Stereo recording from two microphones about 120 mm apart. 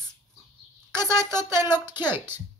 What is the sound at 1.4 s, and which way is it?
Speech, 20° right (ahead or behind).